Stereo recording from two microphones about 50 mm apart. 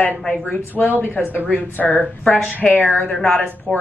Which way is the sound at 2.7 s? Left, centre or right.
Left.